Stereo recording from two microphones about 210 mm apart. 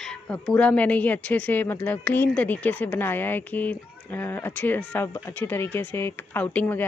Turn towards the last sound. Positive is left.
turn(degrees=10)  # may be behind; listen again after turning